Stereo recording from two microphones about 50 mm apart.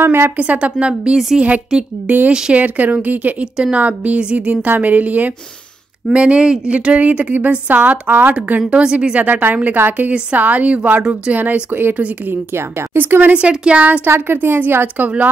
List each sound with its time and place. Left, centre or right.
0.0 s speech: right
0.4 s a woman's voice: right
2.0 s a woman's voice: right
6.1 s a woman's voice: right
11.7 s a woman's voice: right
12.3 s speech: right
13.3 s a woman's voice: right
14.0 s speech: right
15.0 s a woman's voice: right